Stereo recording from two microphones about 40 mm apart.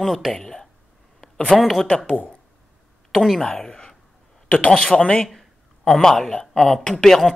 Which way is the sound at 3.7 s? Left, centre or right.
Left.